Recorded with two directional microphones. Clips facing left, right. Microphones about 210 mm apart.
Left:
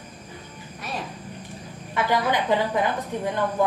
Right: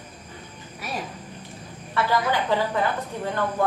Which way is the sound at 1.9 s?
15° left (ahead or behind).